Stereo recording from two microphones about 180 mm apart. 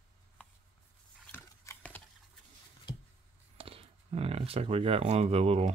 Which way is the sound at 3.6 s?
30° right (ahead or behind).